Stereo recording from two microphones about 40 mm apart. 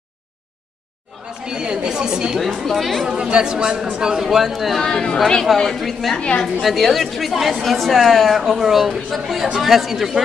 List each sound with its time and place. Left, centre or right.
1.4 s speech: centre
2.3 s speech: centre
3.1 s speech: right
4.7 s speech: centre
6.1 s a woman's voice: left
6.6 s speech: centre